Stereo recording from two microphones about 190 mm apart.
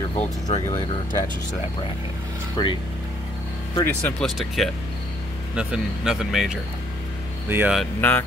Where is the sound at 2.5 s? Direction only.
25° left (ahead or behind).